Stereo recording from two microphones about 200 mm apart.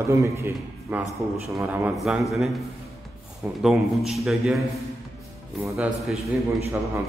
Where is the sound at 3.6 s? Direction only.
Centre (ahead or behind).